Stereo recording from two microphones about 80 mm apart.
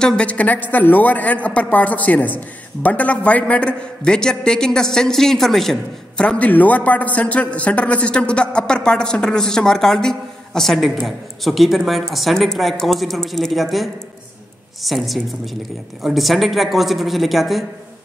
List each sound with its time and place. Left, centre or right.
0.0 s a man's voice: centre
6.2 s a man's voice: centre